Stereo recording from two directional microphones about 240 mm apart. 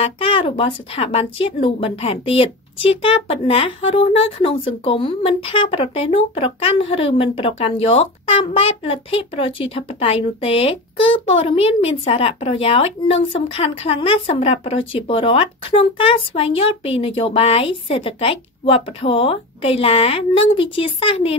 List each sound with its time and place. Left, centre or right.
0.0 s speech: left